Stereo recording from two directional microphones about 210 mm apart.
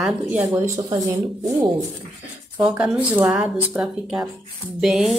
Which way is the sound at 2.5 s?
5° right (ahead or behind).